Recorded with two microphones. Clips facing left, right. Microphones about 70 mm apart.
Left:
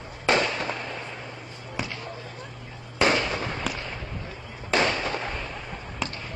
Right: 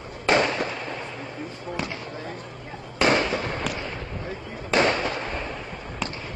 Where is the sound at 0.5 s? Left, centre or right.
Centre.